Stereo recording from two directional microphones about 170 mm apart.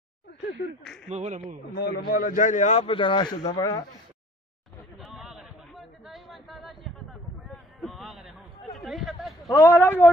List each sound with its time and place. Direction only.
0.8 s a man's voice: centre (ahead or behind)
1.1 s a man's voice: 40° right (ahead or behind)
1.8 s a man's voice: 60° left (ahead or behind)
2.8 s speech: 30° left (ahead or behind)
4.9 s chatter: centre (ahead or behind)
9.5 s speech: 15° left (ahead or behind)